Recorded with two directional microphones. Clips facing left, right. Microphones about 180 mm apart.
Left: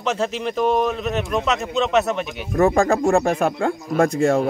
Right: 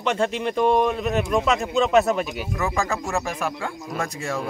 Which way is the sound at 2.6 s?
50° left (ahead or behind).